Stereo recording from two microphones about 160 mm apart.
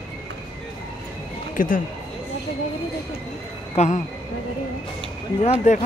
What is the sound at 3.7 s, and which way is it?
Speech, 45° left (ahead or behind).